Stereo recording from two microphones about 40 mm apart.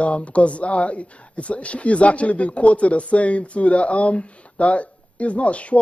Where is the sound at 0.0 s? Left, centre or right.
Left.